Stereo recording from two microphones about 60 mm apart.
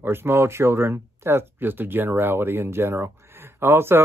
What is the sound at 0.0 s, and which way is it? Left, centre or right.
Speech, right.